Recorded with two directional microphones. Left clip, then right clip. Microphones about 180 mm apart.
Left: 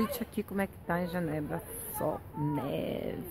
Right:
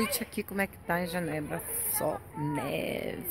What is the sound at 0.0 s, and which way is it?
Speech, 5° right (ahead or behind).